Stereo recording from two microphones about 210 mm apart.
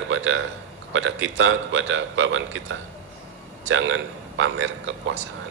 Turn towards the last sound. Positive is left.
turn(degrees=-65)  # may be behind; listen again after turning